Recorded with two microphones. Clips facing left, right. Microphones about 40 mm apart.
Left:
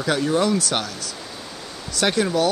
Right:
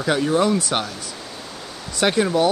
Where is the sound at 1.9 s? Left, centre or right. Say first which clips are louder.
Right 2 dB; centre.